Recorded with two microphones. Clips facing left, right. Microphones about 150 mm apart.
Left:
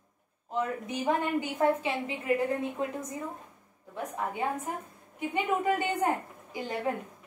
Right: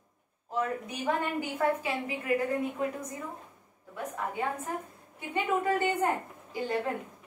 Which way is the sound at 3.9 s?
20° left (ahead or behind).